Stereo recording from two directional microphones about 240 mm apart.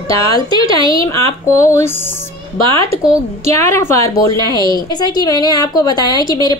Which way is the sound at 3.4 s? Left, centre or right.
Centre.